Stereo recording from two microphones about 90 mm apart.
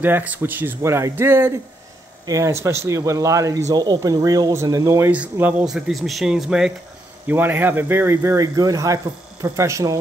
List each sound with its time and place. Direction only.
0.0 s speech: 20° right (ahead or behind)
2.2 s speech: 35° right (ahead or behind)
5.1 s speech: 15° right (ahead or behind)
5.7 s speech: 5° right (ahead or behind)
7.2 s speech: 20° right (ahead or behind)